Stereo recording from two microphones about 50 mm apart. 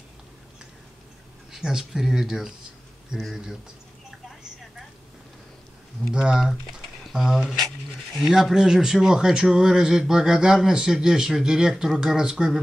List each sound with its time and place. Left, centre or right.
1.5 s speech: centre
6.1 s speech: centre
7.1 s speech: centre